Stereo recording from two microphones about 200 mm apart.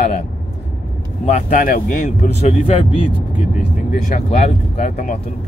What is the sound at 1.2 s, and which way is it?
Speech, 35° left (ahead or behind).